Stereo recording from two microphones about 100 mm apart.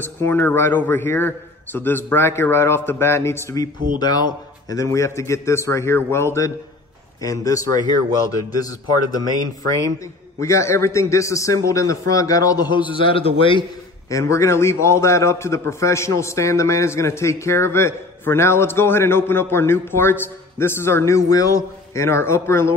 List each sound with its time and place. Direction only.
0.2 s a man's voice: 20° left (ahead or behind)
4.0 s a man's voice: 40° left (ahead or behind)
10.4 s a man's voice: 30° left (ahead or behind); by 13.7 s 60° left (ahead or behind)
14.1 s a man's voice: 30° left (ahead or behind)